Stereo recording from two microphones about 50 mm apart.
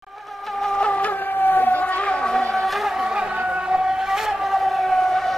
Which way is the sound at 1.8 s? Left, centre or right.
Left.